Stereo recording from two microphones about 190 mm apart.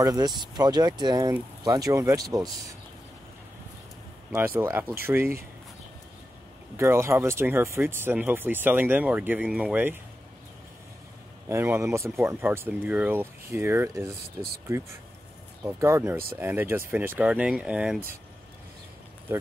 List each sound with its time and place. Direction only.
0.0 s speech: 20° right (ahead or behind)
4.6 s speech: 10° right (ahead or behind)
6.8 s speech: 15° right (ahead or behind)
11.4 s speech: 15° right (ahead or behind)
15.6 s speech: 15° right (ahead or behind)